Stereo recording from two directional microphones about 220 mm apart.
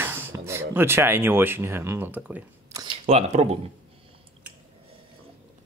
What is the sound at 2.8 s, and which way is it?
Speech, 30° right (ahead or behind).